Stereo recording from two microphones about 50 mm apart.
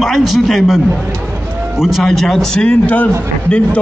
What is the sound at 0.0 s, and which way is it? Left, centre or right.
Speech, centre.